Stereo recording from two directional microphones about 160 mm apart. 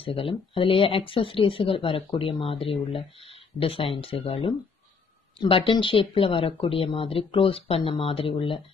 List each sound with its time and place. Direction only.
0.0 s speech: 35° left (ahead or behind)